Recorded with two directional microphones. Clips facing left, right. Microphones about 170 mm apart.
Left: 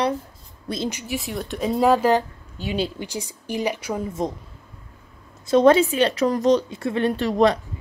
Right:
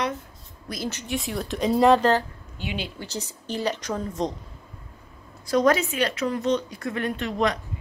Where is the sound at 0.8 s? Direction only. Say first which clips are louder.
Right 2 dB; 10° left (ahead or behind).